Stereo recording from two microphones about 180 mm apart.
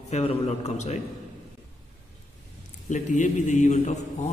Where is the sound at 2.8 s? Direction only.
40° left (ahead or behind).